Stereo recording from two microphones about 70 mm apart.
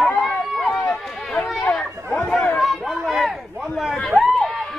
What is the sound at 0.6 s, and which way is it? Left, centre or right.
Run, centre.